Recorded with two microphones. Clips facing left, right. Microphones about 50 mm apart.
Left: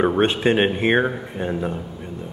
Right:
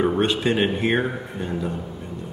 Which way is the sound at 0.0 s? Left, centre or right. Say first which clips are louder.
Left 3 dB; left.